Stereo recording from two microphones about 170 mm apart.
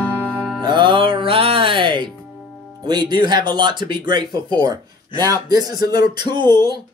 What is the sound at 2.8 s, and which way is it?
Speech, 25° right (ahead or behind).